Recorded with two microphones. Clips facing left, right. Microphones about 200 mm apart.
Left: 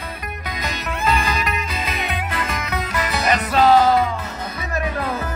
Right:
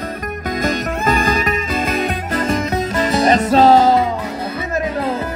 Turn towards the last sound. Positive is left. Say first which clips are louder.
# right 4 dB
turn(degrees=-25)  # may be behind; listen again after turning